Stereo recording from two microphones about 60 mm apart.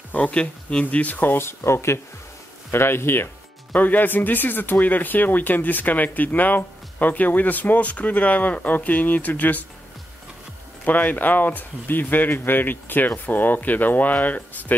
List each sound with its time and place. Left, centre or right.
0.1 s speech: left
1.6 s speech: left
3.7 s speech: left
10.9 s speech: left